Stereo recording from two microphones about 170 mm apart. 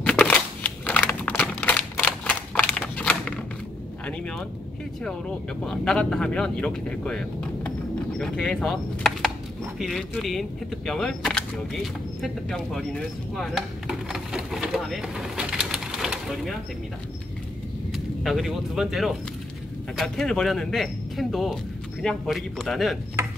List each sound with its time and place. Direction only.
0.0 s a sound: 5° left (ahead or behind)
5.7 s speech: 5° left (ahead or behind)
17.9 s speech: centre (ahead or behind)